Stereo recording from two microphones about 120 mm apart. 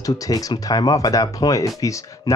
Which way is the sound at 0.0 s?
30° left (ahead or behind).